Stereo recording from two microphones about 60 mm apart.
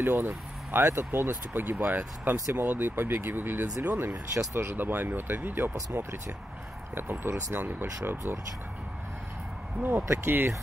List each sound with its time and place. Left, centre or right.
0.0 s speech: right
10.0 s speech: right